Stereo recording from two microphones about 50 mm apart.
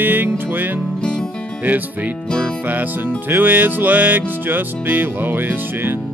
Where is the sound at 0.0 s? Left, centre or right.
Right.